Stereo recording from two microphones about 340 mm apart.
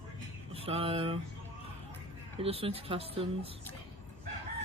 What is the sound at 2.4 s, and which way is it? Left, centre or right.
Speech, centre.